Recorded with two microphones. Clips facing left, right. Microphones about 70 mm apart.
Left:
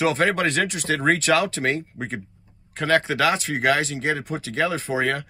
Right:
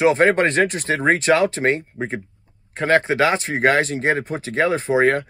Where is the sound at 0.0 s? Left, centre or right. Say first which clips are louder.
Right 5 dB; right.